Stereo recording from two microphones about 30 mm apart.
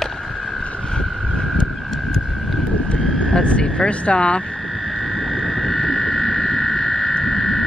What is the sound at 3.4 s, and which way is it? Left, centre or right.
Speech, left.